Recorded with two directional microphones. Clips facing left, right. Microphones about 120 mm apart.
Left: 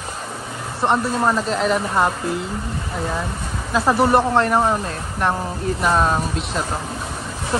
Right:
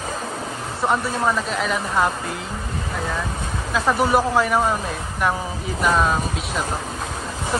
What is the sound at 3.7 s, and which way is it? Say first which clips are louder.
Speech: left 3 dB; centre (ahead or behind).